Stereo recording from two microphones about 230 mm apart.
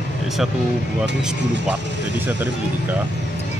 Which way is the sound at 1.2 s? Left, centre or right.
Centre.